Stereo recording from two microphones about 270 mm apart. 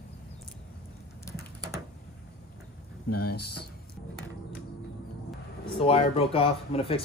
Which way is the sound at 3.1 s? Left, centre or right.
Left.